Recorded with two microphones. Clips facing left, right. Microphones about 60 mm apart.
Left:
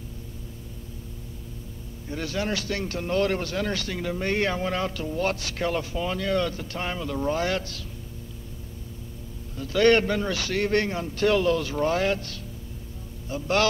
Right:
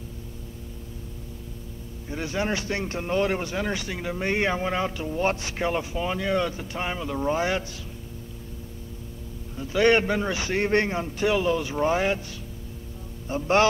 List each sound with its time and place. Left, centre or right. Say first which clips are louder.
2.0 s a man's voice: right 1 dB; centre
9.6 s a man's voice: left 1 dB; centre
13.3 s a man's voice: right 3 dB; right